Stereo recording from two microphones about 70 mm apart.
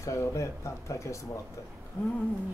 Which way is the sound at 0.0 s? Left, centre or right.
Left.